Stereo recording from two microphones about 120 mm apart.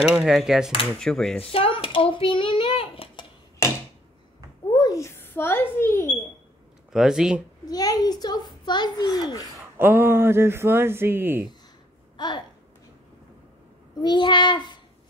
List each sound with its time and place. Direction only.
0.1 s speech: 5° right (ahead or behind)
1.4 s a child's voice: 50° left (ahead or behind)
3.6 s a sound: 25° left (ahead or behind)
4.7 s speech: 30° left (ahead or behind)
6.9 s speech: 5° right (ahead or behind)
7.6 s a child's voice: 30° left (ahead or behind)
9.6 s speech: 15° right (ahead or behind)
12.2 s a sound: 40° left (ahead or behind)
14.0 s a child's voice: 40° left (ahead or behind)